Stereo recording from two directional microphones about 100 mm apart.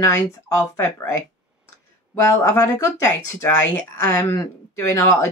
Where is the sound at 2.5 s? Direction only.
25° left (ahead or behind).